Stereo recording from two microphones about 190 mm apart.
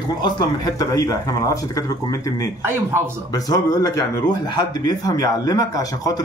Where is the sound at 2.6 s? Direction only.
10° right (ahead or behind).